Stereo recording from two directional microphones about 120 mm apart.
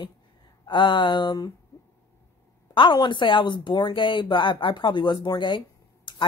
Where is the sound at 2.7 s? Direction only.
40° left (ahead or behind).